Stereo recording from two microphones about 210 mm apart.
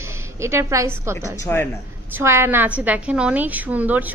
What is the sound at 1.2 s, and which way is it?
Speech, 10° left (ahead or behind).